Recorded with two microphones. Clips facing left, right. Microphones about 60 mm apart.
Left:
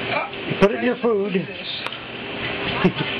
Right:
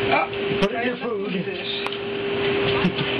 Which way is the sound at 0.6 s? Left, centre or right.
Left.